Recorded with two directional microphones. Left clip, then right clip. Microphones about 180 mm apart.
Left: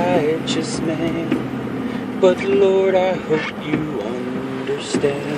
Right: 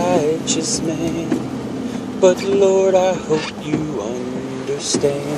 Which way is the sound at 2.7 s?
20° right (ahead or behind).